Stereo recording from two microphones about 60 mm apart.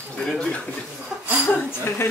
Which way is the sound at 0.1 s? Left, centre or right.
Centre.